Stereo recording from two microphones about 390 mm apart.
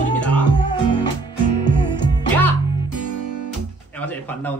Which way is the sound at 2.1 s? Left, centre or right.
Centre.